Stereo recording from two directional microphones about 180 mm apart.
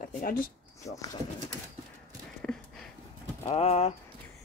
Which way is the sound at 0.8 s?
20° left (ahead or behind).